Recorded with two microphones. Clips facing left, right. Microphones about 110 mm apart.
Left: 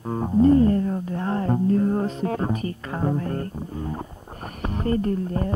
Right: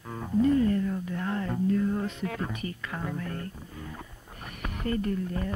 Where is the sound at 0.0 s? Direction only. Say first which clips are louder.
Left 7 dB; 35° left (ahead or behind).